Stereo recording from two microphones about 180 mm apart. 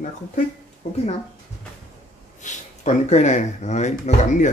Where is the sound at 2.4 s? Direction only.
40° left (ahead or behind).